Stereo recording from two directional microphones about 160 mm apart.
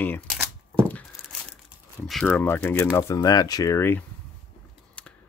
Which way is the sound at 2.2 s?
10° left (ahead or behind).